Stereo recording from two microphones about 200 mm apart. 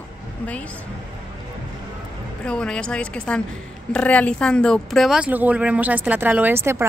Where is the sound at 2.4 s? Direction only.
5° left (ahead or behind).